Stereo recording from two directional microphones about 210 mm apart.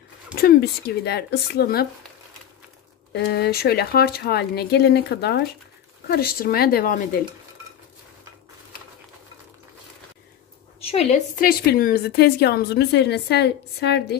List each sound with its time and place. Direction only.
0.3 s a woman's voice: 45° left (ahead or behind)
3.1 s a woman's voice: 50° left (ahead or behind)
10.8 s a woman's voice: 30° left (ahead or behind)
11.4 s a woman's voice: 45° left (ahead or behind)